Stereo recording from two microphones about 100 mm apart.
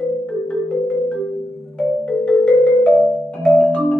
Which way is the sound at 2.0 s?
10° left (ahead or behind).